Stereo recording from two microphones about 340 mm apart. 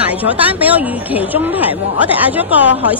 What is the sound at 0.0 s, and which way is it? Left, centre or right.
A woman's voice, centre.